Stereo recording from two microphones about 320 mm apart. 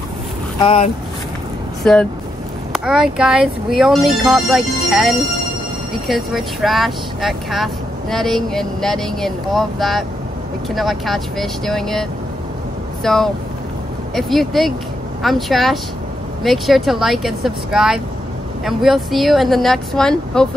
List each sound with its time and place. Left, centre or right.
0.6 s speech: centre
1.8 s speech: centre